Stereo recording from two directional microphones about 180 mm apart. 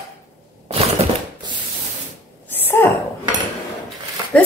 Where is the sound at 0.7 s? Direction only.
35° right (ahead or behind).